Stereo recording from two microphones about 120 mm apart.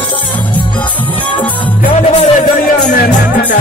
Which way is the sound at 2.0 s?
70° left (ahead or behind).